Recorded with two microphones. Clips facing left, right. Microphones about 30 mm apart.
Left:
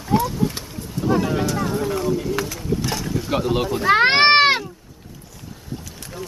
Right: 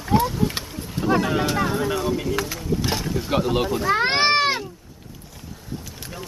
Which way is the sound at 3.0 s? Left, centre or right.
Centre.